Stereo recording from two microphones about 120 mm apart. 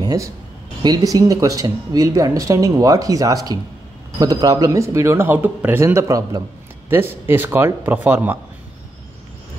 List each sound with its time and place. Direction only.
0.0 s speech: 30° right (ahead or behind)